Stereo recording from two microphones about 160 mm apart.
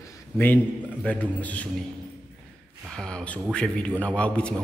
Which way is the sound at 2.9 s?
5° left (ahead or behind).